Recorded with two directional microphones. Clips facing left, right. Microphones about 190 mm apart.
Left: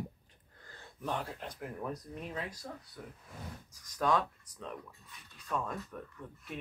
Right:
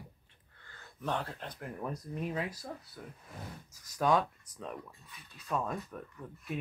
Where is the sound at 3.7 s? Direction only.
10° right (ahead or behind).